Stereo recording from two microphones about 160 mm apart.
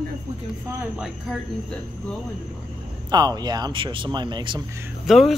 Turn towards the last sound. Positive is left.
turn(degrees=0)  # may be behind; listen again after turning